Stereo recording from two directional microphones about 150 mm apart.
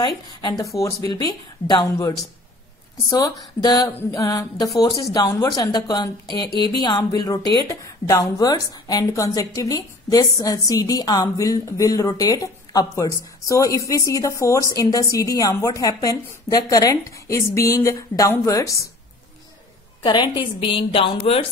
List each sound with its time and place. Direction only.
0.0 s speech: 30° left (ahead or behind)
20.0 s a woman's voice: 30° left (ahead or behind)